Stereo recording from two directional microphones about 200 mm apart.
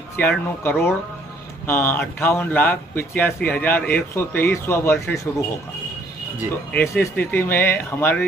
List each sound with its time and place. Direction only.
0.2 s speech: 10° left (ahead or behind)
6.7 s speech: 10° left (ahead or behind)